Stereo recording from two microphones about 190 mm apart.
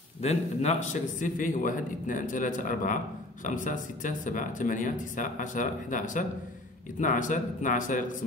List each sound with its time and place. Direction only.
0.2 s a man's voice: 35° left (ahead or behind)